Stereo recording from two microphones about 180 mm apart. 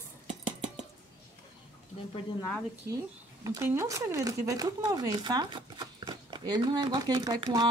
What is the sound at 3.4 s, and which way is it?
Speech, 15° right (ahead or behind).